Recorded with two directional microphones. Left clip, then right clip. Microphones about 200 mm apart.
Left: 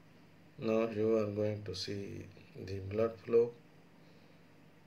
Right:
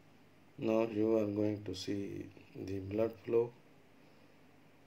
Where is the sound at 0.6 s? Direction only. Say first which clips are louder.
Even; 35° right (ahead or behind).